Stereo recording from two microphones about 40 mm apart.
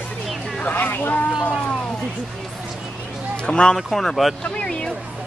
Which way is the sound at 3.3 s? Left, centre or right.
Left.